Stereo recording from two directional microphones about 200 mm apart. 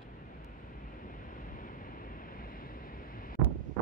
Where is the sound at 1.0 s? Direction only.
45° left (ahead or behind).